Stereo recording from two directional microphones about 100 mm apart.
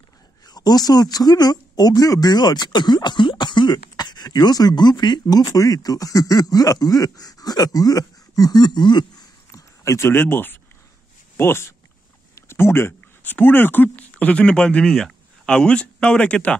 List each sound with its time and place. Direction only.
0.5 s speech: 40° left (ahead or behind)
9.5 s a sound: 30° left (ahead or behind)
11.3 s speech: 25° left (ahead or behind)